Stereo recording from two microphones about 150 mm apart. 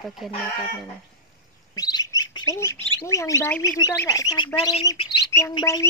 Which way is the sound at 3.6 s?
25° left (ahead or behind).